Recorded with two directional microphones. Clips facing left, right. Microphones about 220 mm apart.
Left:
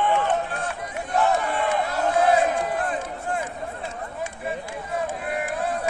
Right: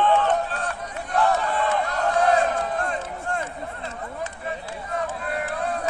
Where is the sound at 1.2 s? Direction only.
15° left (ahead or behind).